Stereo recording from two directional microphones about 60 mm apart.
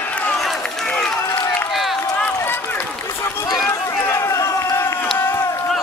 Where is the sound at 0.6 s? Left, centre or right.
Centre.